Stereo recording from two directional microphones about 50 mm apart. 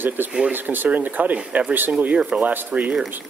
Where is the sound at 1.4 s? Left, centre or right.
Right.